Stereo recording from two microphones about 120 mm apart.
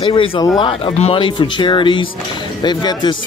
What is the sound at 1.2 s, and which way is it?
Speech, 40° left (ahead or behind).